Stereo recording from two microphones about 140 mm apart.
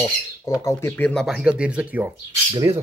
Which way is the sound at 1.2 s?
5° right (ahead or behind).